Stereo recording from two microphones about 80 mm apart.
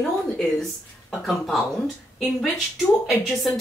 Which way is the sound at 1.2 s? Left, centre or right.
Centre.